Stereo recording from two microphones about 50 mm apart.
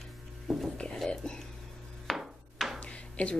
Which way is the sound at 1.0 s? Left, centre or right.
Centre.